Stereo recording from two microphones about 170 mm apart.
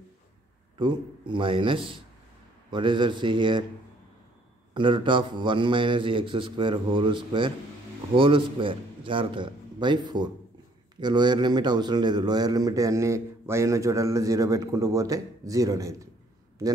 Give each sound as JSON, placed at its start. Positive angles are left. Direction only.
{"t": 0.7, "sound": "speech", "side_deg": -25}
{"t": 4.7, "sound": "speech", "side_deg": -30}